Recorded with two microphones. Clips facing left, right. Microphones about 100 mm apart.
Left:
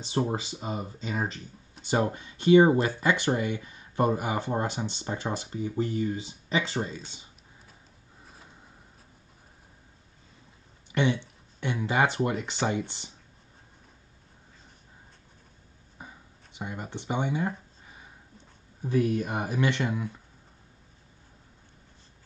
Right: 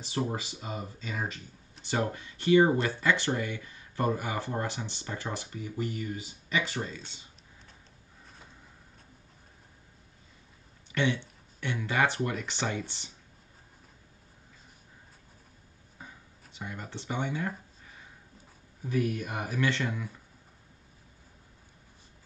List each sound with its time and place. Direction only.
0.0 s speech: 25° left (ahead or behind)
10.9 s a sound: 15° left (ahead or behind)
11.6 s speech: 20° left (ahead or behind)
16.0 s a sound: 20° left (ahead or behind)
16.5 s speech: 20° left (ahead or behind)
18.8 s speech: 30° left (ahead or behind)